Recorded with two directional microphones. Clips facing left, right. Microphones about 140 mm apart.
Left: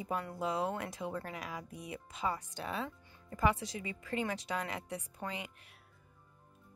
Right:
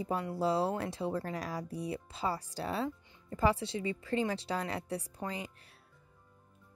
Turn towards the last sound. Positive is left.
turn(degrees=-35)  # may be behind; listen again after turning